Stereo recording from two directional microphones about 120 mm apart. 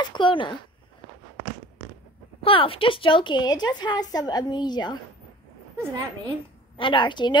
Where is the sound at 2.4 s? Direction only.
50° left (ahead or behind).